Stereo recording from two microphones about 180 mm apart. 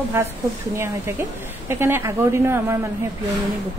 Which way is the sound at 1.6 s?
15° right (ahead or behind).